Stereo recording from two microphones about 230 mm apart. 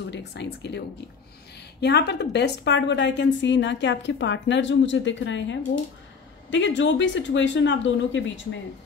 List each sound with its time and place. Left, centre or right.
0.1 s a woman's voice: left